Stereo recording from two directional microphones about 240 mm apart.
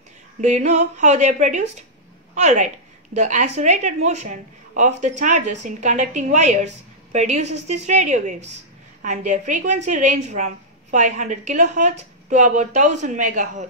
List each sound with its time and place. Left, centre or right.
0.4 s a woman's voice: right